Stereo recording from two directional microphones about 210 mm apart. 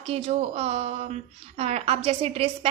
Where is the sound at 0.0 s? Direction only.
30° right (ahead or behind).